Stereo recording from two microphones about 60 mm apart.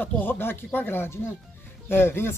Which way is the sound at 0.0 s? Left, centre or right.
Left.